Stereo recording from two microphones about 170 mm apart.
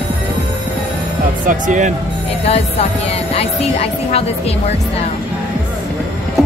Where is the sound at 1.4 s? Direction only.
50° right (ahead or behind).